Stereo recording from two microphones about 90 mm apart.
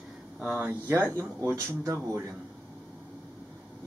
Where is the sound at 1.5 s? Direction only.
35° right (ahead or behind).